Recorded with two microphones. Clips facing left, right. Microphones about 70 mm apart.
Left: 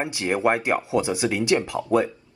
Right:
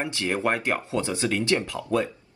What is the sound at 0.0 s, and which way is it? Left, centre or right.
Speech, centre.